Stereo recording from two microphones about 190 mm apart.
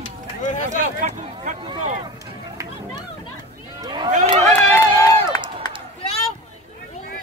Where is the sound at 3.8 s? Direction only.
20° right (ahead or behind).